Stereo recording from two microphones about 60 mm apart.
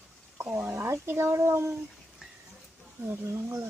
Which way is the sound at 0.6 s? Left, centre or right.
Right.